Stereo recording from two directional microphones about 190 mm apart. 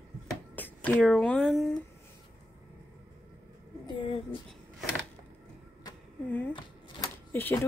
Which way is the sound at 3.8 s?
25° left (ahead or behind).